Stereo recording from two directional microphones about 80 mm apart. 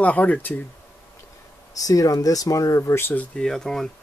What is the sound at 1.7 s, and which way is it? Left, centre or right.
Speech, left.